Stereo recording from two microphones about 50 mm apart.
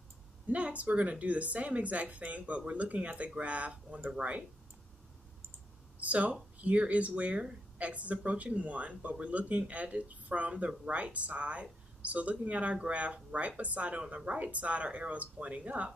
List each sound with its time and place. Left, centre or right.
0.5 s speech: right
5.9 s speech: right